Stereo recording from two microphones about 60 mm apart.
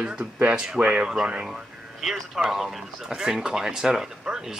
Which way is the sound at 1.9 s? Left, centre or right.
Centre.